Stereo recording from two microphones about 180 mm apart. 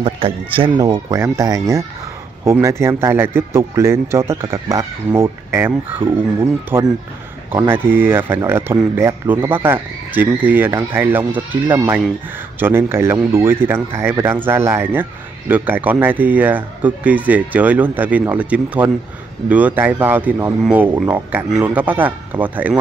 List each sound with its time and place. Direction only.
0.0 s speech: 30° right (ahead or behind); by 22.8 s 10° right (ahead or behind)